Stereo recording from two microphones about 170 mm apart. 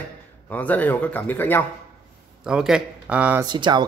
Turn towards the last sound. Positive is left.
turn(degrees=-25)  # may be behind; listen again after turning